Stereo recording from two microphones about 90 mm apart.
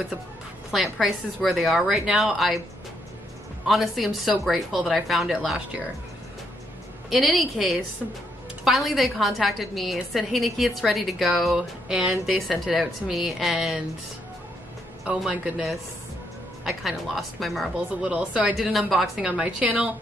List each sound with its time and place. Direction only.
0.9 s a woman's voice: centre (ahead or behind)
3.6 s a woman's voice: centre (ahead or behind)
7.1 s a woman's voice: centre (ahead or behind)
15.0 s a woman's voice: 10° right (ahead or behind)
16.6 s a woman's voice: centre (ahead or behind)
17.7 s a woman's voice: 10° right (ahead or behind)